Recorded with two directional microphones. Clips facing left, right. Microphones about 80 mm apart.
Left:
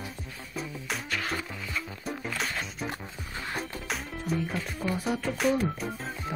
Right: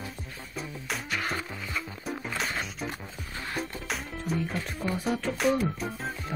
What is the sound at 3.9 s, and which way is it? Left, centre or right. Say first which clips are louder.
Music: left 1 dB; centre.